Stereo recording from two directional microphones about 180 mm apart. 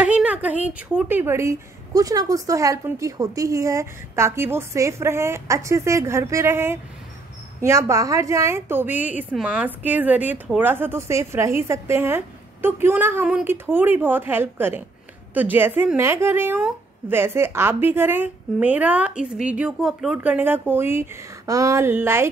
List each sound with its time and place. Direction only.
0.0 s a woman's voice: 5° right (ahead or behind)